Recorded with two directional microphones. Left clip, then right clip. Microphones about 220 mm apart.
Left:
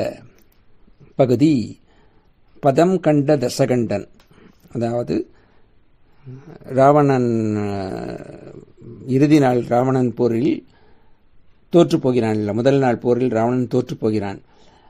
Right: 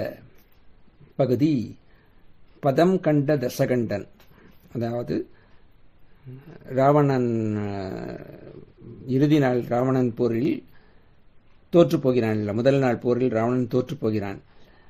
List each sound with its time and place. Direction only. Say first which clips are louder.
1.1 s a man's voice: left 6 dB; 25° left (ahead or behind)
6.3 s speech: left 6 dB; 20° left (ahead or behind)
11.7 s speech: left 3 dB; 20° left (ahead or behind)